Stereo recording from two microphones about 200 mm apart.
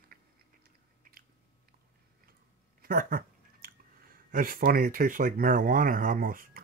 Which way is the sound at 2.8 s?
45° right (ahead or behind).